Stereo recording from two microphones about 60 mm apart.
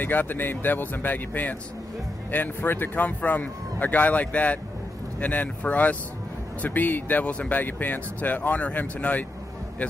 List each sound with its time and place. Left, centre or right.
0.0 s speech: left